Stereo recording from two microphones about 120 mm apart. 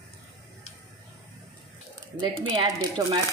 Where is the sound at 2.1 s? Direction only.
35° right (ahead or behind).